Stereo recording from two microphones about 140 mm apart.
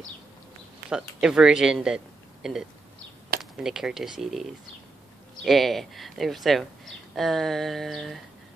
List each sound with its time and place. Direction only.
0.8 s speech: 5° right (ahead or behind)
3.3 s a sound: 90° right
3.6 s speech: 5° right (ahead or behind)